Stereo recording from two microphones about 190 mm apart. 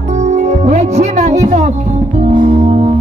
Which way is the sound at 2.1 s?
40° right (ahead or behind).